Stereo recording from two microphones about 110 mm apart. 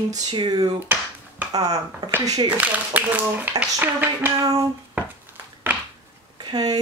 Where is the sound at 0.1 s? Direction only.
40° right (ahead or behind).